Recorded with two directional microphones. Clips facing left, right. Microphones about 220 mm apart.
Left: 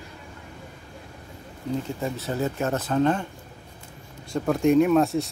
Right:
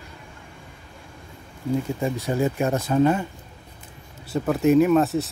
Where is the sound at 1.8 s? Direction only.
15° right (ahead or behind).